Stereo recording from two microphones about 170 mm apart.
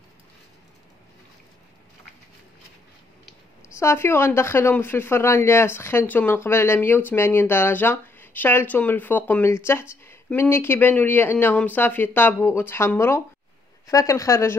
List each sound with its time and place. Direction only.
3.6 s a woman's voice: 15° left (ahead or behind)